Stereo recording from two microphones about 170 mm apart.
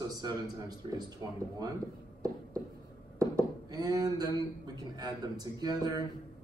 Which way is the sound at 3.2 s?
20° right (ahead or behind).